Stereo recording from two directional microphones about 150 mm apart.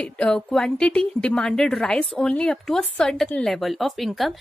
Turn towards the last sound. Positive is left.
turn(degrees=0)  # may be behind; listen again after turning